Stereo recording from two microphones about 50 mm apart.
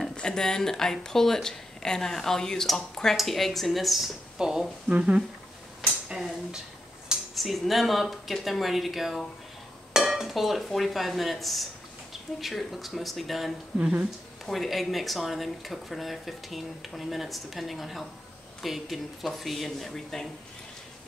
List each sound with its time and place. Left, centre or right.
0.1 s speech: centre
4.4 s speech: centre
4.8 s speech: right
6.1 s a sound: centre
7.3 s speech: centre